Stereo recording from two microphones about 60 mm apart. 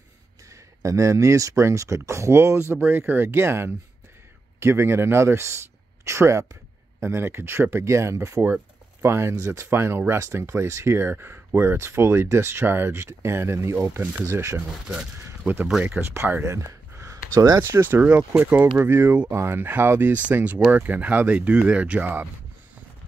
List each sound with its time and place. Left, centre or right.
0.5 s speech: right
2.8 s speech: right
9.0 s speech: right
12.6 s speech: right
16.0 s speech: right
16.4 s a sound: right
17.8 s speech: right